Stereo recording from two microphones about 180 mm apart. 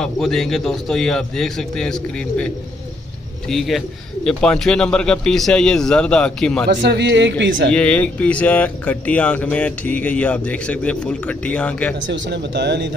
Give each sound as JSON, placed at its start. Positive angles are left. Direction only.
{"t": 0.0, "sound": "speech", "side_deg": 5}
{"t": 6.7, "sound": "speech", "side_deg": -75}
{"t": 7.7, "sound": "speech", "side_deg": 5}
{"t": 12.1, "sound": "speech", "side_deg": -75}